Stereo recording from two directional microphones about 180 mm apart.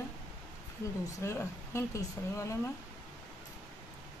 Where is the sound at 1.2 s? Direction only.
15° left (ahead or behind).